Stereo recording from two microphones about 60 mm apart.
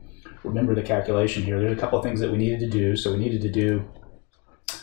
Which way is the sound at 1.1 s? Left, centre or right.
Centre.